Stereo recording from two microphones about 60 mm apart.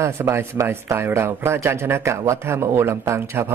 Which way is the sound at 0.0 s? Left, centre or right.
Right.